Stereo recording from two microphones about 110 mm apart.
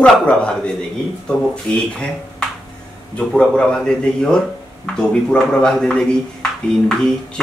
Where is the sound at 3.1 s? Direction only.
10° left (ahead or behind).